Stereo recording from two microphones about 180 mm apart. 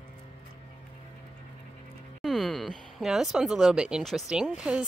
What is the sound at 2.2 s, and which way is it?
Speech, centre (ahead or behind).